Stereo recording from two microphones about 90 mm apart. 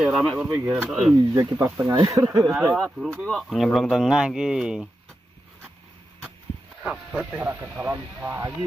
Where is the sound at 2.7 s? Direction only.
Centre (ahead or behind).